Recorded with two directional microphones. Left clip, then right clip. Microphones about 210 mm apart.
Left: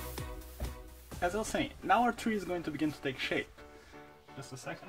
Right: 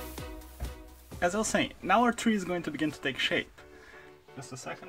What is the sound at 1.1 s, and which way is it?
Speech, 35° right (ahead or behind).